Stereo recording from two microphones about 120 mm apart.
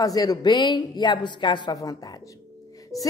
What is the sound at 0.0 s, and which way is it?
A woman's voice, 30° left (ahead or behind).